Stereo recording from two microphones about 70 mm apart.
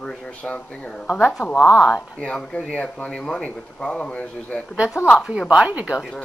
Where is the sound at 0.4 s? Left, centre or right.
Centre.